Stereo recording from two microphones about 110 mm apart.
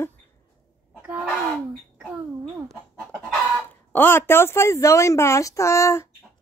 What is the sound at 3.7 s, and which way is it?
Speech, 15° left (ahead or behind).